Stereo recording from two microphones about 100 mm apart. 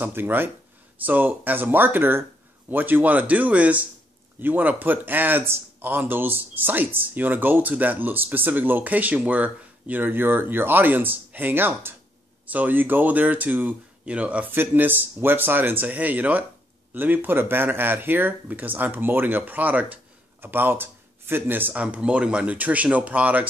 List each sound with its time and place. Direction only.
0.0 s speech: 20° right (ahead or behind)